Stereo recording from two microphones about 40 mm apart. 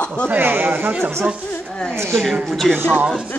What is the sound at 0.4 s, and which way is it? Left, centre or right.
Speech, right.